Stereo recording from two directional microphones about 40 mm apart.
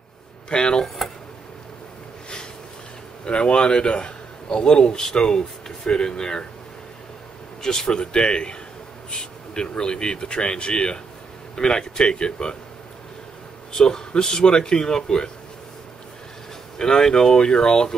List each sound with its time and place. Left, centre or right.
0.5 s a man's voice: left
0.8 s a sound: centre
3.3 s a man's voice: left
7.6 s a man's voice: centre
13.7 s a man's voice: centre
16.7 s a man's voice: centre